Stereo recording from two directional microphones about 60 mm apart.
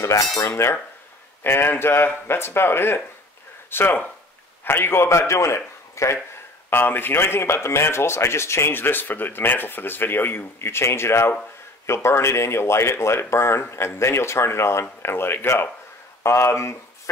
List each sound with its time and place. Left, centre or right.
0.5 s a man's voice: left
6.7 s speech: left